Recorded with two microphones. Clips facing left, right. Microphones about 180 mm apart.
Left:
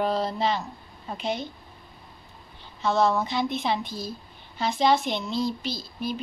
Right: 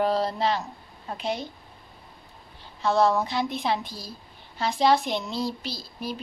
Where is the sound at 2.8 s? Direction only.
10° right (ahead or behind).